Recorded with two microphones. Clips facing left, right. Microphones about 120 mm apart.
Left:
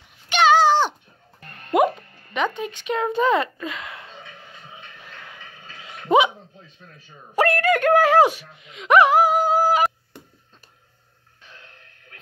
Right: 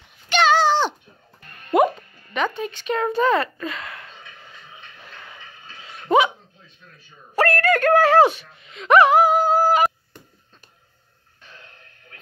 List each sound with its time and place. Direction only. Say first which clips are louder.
0.3 s a sound: left 1 dB; 10° left (ahead or behind)
1.7 s speech: right 1 dB; 10° left (ahead or behind)
5.9 s dog: even; 20° left (ahead or behind)
7.3 s speech: even; 15° left (ahead or behind)